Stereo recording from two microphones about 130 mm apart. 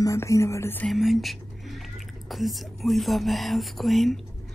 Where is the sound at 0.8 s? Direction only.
Centre (ahead or behind).